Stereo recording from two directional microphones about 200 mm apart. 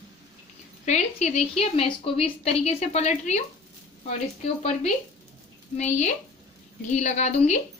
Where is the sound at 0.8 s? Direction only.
35° left (ahead or behind).